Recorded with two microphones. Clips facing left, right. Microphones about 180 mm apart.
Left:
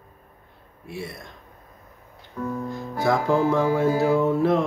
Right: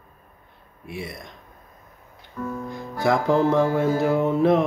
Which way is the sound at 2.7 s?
20° right (ahead or behind).